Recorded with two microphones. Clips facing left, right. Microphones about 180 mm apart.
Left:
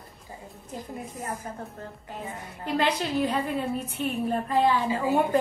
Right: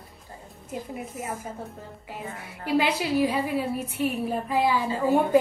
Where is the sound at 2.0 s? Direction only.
10° right (ahead or behind).